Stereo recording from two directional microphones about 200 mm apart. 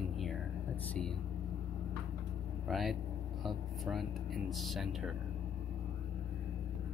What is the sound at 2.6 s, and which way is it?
Speech, centre (ahead or behind).